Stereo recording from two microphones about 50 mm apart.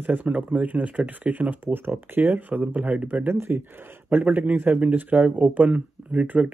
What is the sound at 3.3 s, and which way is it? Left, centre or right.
Speech, right.